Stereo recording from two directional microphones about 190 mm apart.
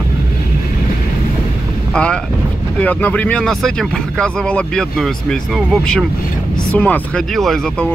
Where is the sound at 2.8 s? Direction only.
10° left (ahead or behind).